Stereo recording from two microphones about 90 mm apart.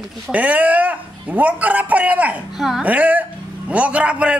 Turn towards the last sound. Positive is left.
turn(degrees=-15)  # may be behind; listen again after turning